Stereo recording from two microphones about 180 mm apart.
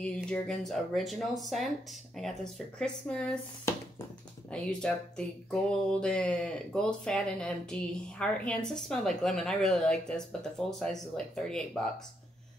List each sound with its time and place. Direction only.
0.0 s speech: 5° left (ahead or behind)
3.7 s a sound: 15° left (ahead or behind)
4.5 s speech: 5° left (ahead or behind)